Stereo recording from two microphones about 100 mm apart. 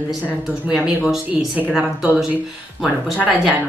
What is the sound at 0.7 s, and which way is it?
Speech, 10° right (ahead or behind).